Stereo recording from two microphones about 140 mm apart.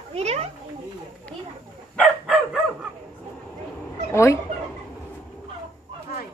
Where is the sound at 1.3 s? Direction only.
10° left (ahead or behind).